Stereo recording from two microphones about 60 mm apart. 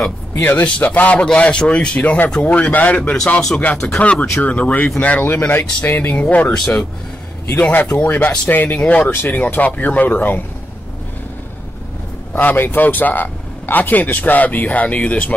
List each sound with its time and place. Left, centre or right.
0.3 s speech: left
0.7 s speech: left
3.3 s speech: centre
4.0 s speech: left
5.2 s speech: left
5.8 s speech: left
6.5 s speech: centre
7.7 s speech: left
8.7 s speech: centre
9.0 s speech: left
12.3 s speech: left